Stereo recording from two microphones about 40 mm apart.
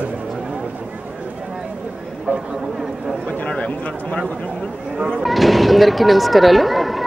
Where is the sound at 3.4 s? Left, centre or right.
Left.